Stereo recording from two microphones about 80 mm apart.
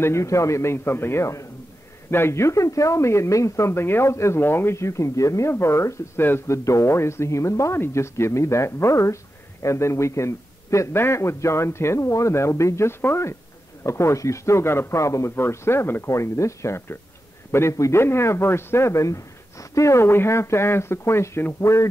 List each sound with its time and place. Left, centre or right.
0.0 s speech: left